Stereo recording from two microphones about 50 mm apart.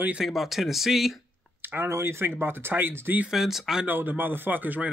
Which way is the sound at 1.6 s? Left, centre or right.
Right.